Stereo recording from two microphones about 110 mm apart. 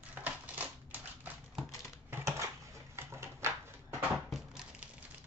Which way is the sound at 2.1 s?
25° right (ahead or behind).